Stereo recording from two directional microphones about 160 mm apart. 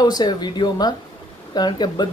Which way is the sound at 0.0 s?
25° left (ahead or behind).